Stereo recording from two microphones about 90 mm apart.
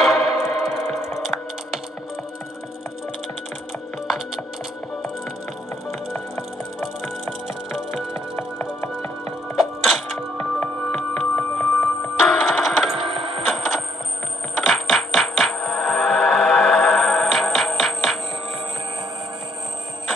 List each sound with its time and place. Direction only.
0.0 s music: centre (ahead or behind)
8.1 s music: 25° left (ahead or behind)
9.6 s music: centre (ahead or behind)
10.3 s music: 20° left (ahead or behind)
12.3 s ringtone: centre (ahead or behind)
13.0 s a sound: 85° right
13.5 s a sound: 5° right (ahead or behind)
14.7 s coin: centre (ahead or behind)